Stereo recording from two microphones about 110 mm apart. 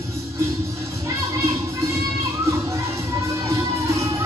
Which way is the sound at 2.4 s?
25° right (ahead or behind).